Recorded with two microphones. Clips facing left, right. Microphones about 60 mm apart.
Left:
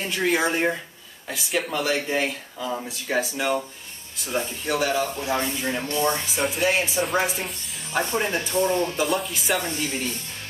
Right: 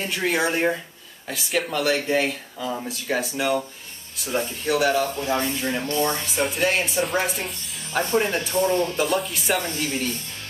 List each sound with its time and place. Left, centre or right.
0.1 s speech: centre
5.6 s speech: centre
9.8 s speech: centre